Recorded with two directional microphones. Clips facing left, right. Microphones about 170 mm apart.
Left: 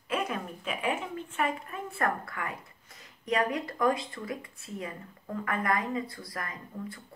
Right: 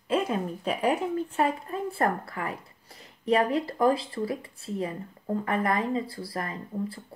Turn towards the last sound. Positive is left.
turn(degrees=-30)  # may be behind; listen again after turning